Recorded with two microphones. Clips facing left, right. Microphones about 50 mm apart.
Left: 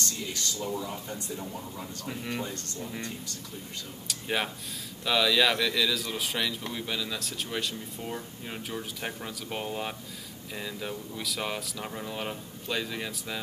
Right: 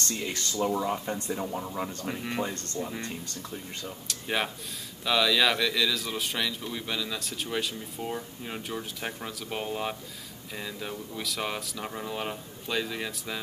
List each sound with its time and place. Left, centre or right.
0.2 s speech: right
2.1 s speech: right
4.1 s speech: centre